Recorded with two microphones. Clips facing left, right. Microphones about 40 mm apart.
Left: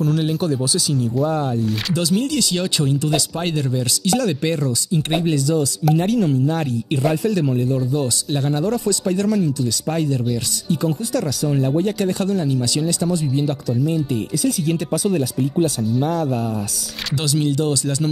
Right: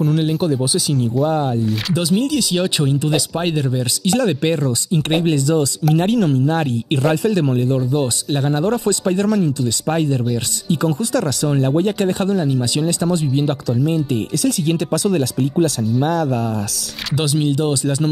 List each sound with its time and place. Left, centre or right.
0.2 s speech: centre
2.0 s speech: centre
5.2 s speech: right
8.6 s speech: right
11.8 s speech: right
14.4 s speech: right
17.2 s speech: right